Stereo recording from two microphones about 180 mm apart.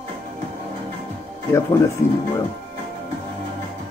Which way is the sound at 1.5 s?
15° left (ahead or behind).